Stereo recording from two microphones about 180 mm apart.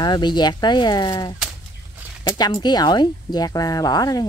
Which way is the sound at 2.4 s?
25° left (ahead or behind).